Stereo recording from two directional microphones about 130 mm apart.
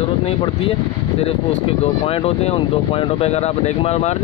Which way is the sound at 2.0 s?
50° left (ahead or behind).